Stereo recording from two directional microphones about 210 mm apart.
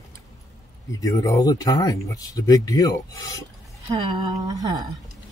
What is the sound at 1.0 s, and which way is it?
Speech, 15° left (ahead or behind).